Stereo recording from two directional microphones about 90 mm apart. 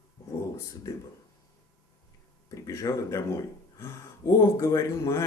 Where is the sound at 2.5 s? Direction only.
35° left (ahead or behind).